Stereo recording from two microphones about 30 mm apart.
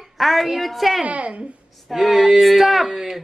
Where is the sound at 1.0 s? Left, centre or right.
Right.